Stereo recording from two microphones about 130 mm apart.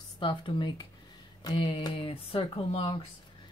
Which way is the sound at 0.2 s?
40° left (ahead or behind).